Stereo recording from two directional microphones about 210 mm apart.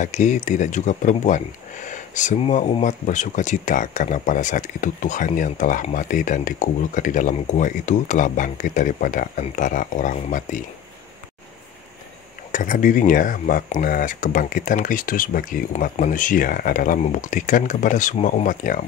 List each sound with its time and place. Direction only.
0.0 s speech: 35° left (ahead or behind)
12.5 s speech: 40° left (ahead or behind)